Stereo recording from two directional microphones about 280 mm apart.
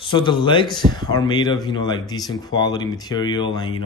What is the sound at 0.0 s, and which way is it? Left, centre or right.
Speech, centre.